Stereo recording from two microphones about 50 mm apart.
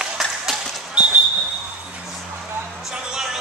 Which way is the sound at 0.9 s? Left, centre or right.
Right.